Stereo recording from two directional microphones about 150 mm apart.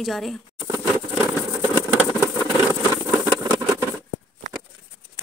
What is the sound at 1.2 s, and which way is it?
Vehicle, 15° right (ahead or behind).